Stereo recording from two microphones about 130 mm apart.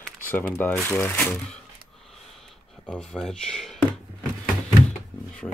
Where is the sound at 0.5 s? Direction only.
15° left (ahead or behind).